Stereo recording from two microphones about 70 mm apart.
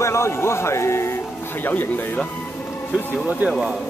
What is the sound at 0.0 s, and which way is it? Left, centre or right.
Speech, left.